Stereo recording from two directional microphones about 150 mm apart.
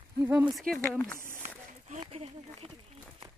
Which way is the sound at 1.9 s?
45° right (ahead or behind).